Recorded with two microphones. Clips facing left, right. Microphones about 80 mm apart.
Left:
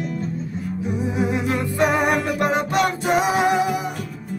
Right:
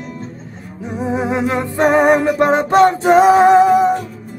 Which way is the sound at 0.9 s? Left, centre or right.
Right.